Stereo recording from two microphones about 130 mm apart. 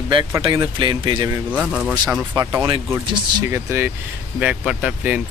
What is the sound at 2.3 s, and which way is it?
Speech, 25° right (ahead or behind).